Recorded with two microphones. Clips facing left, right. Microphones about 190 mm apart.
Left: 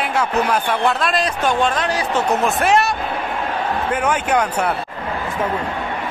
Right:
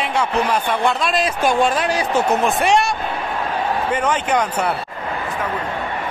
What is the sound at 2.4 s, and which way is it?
Speech, centre (ahead or behind).